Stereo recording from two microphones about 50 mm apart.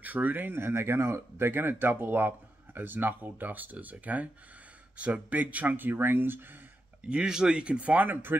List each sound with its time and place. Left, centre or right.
0.0 s speech: right
7.1 s speech: centre
8.0 s speech: right